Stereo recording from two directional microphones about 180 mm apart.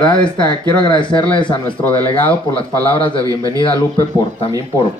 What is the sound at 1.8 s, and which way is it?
Speech, 10° left (ahead or behind).